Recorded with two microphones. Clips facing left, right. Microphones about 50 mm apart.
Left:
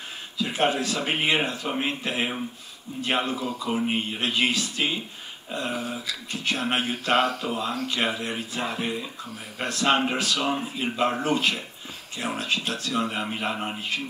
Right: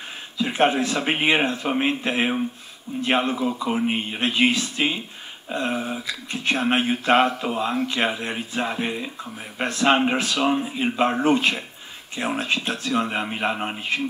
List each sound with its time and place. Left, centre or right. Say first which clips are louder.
0.4 s speech: right 4 dB; right